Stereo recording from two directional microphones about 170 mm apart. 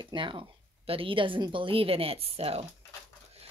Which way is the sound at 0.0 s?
30° right (ahead or behind).